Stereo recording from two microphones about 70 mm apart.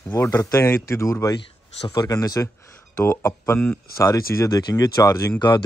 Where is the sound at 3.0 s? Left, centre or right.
Left.